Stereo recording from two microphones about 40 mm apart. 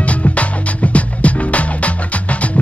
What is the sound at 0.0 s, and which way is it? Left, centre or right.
Music, left.